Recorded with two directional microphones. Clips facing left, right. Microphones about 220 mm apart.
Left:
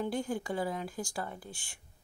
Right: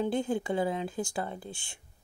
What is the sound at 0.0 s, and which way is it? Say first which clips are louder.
Speech: right 4 dB; 20° right (ahead or behind).